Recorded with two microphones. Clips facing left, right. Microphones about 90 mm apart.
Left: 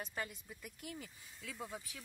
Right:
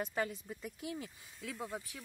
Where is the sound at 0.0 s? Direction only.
35° right (ahead or behind).